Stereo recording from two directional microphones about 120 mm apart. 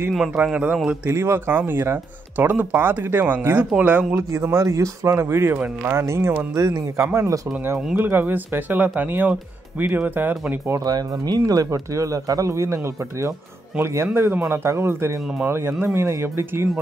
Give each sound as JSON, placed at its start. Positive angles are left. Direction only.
{"t": 0.4, "sound": "speech", "side_deg": -10}
{"t": 4.1, "sound": "speech", "side_deg": -25}
{"t": 10.7, "sound": "speech", "side_deg": -35}